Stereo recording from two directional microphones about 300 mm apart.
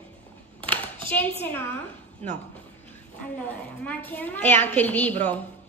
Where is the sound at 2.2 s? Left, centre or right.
Right.